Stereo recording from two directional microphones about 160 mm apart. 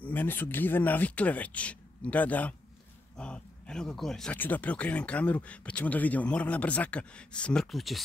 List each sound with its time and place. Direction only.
0.0 s speech: 10° left (ahead or behind)